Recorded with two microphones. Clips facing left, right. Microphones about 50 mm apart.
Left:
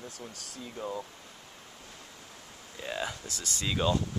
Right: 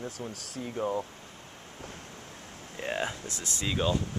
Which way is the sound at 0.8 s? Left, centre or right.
Right.